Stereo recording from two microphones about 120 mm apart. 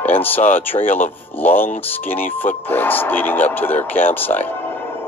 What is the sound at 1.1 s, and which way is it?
Speech, 15° left (ahead or behind).